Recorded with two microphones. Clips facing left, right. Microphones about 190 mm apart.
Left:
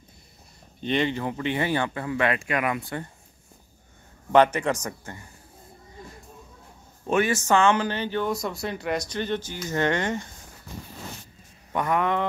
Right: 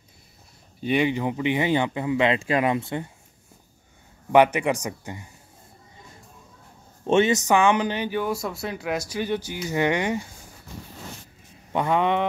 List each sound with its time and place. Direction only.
0.7 s speech: 10° right (ahead or behind); by 3.0 s 25° right (ahead or behind)
4.3 s speech: 15° right (ahead or behind)
7.1 s speech: 25° right (ahead or behind)
11.7 s a sound: 25° right (ahead or behind)